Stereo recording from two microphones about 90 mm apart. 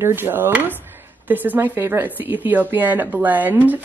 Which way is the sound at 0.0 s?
25° right (ahead or behind).